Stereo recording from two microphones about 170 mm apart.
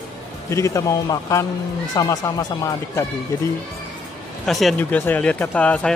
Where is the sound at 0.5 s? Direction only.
20° left (ahead or behind).